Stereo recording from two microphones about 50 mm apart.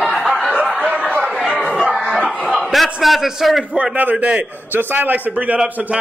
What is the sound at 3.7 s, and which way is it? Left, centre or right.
A man's voice, right.